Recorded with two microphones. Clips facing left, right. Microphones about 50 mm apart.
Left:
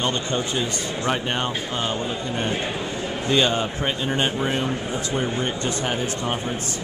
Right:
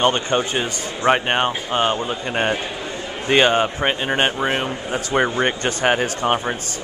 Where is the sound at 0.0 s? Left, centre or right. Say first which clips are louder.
Right 6 dB; right.